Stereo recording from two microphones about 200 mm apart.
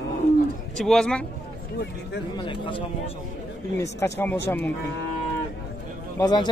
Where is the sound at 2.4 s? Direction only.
25° left (ahead or behind).